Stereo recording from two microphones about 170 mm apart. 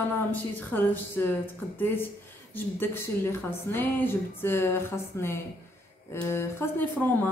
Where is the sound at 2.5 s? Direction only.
10° left (ahead or behind).